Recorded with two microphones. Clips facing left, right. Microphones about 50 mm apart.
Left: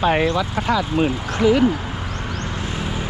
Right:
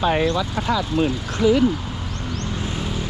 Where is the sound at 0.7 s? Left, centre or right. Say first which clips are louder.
Left 1 dB; left.